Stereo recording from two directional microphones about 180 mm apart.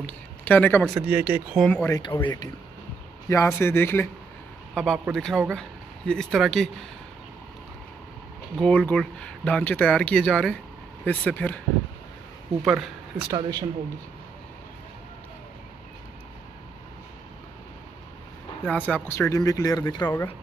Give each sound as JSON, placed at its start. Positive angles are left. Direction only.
{"t": 0.0, "sound": "speech", "side_deg": 10}
{"t": 0.9, "sound": "speech", "side_deg": -10}
{"t": 1.9, "sound": "speech", "side_deg": 25}
{"t": 3.3, "sound": "speech", "side_deg": 15}
{"t": 4.7, "sound": "speech", "side_deg": 0}
{"t": 8.5, "sound": "speech", "side_deg": 5}
{"t": 12.6, "sound": "speech", "side_deg": -5}
{"t": 13.4, "sound": "speech", "side_deg": -20}
{"t": 18.7, "sound": "speech", "side_deg": 5}